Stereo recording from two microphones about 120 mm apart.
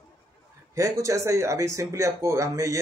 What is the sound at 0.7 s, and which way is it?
Speech, 25° right (ahead or behind).